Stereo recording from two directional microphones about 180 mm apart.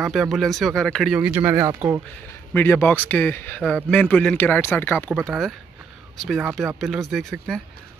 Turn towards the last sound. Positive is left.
turn(degrees=0)  # may be behind; listen again after turning